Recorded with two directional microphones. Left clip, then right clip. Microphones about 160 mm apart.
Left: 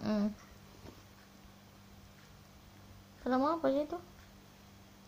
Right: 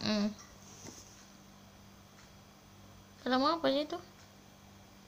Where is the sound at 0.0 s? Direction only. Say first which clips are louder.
Right 2 dB; 15° left (ahead or behind).